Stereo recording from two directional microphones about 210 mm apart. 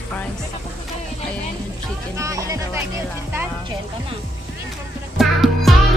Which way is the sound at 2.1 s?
15° right (ahead or behind).